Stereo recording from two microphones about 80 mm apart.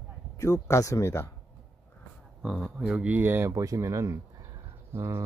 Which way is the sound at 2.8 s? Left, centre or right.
Centre.